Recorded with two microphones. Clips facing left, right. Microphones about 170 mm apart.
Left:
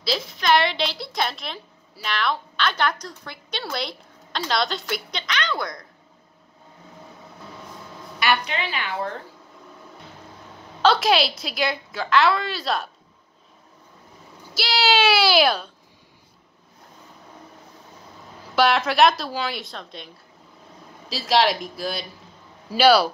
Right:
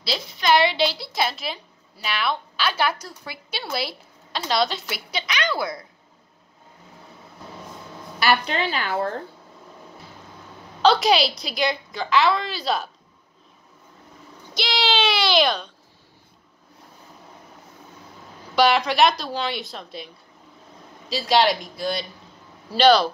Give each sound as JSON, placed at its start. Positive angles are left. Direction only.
{"t": 0.0, "sound": "a woman's voice", "side_deg": 0}
{"t": 8.2, "sound": "a woman's voice", "side_deg": -35}
{"t": 10.8, "sound": "a woman's voice", "side_deg": 0}
{"t": 14.5, "sound": "speech", "side_deg": 5}
{"t": 18.5, "sound": "a woman's voice", "side_deg": 0}
{"t": 21.1, "sound": "a woman's voice", "side_deg": 0}